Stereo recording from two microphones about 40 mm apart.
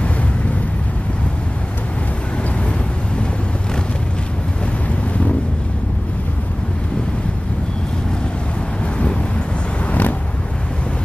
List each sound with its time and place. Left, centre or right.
9.8 s vehicle: left